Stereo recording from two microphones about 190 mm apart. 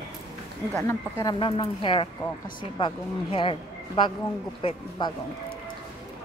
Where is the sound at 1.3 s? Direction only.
25° left (ahead or behind).